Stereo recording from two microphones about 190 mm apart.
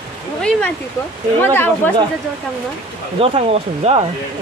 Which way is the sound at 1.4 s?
10° left (ahead or behind).